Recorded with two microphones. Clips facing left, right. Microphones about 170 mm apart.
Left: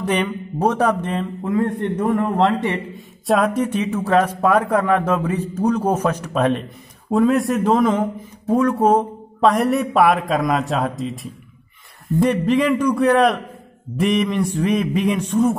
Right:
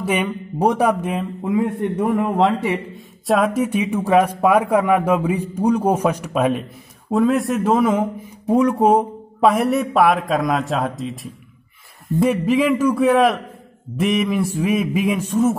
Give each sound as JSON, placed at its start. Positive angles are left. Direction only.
{"t": 0.0, "sound": "speech", "side_deg": -10}
{"t": 8.9, "sound": "a man's voice", "side_deg": 0}
{"t": 12.2, "sound": "a man's voice", "side_deg": -5}